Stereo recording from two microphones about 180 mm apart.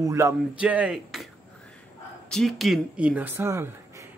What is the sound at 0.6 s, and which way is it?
Speech, 5° right (ahead or behind).